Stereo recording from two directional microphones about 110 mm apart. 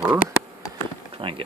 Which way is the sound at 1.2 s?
50° right (ahead or behind).